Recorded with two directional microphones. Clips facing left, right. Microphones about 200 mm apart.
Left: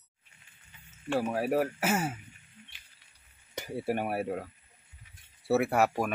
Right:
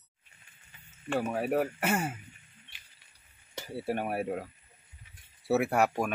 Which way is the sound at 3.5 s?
15° left (ahead or behind).